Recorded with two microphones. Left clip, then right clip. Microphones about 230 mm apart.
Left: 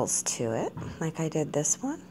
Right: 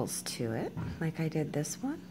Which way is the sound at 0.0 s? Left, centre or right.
Centre.